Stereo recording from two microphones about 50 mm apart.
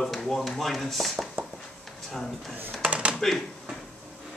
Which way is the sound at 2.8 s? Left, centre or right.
Right.